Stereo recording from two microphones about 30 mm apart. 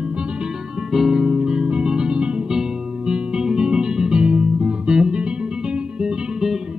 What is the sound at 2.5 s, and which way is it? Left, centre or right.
Music, centre.